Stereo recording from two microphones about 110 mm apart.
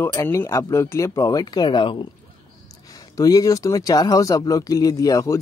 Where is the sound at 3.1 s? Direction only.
35° left (ahead or behind).